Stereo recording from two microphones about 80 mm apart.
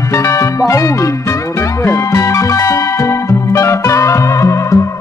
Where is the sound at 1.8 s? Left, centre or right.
Left.